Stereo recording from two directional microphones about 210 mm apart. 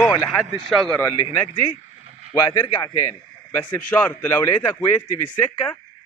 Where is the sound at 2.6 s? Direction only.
15° left (ahead or behind).